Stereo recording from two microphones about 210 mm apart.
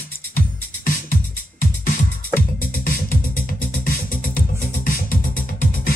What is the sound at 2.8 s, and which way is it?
Music, 45° left (ahead or behind).